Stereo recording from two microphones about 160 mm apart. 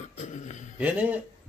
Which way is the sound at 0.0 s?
50° left (ahead or behind).